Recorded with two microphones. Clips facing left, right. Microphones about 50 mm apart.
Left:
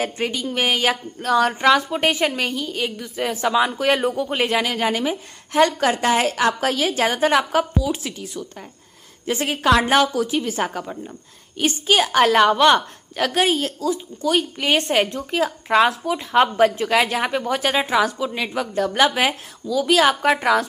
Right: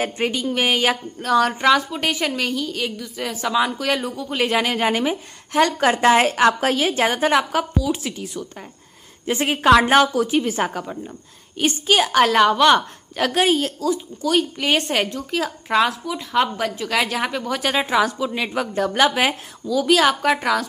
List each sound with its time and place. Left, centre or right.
0.0 s a woman's voice: centre
1.9 s a woman's voice: left
3.7 s a woman's voice: left
4.0 s speech: left
4.5 s a woman's voice: centre
5.5 s a woman's voice: centre
5.8 s a woman's voice: centre
15.1 s a woman's voice: centre
15.7 s a woman's voice: centre
16.1 s a woman's voice: centre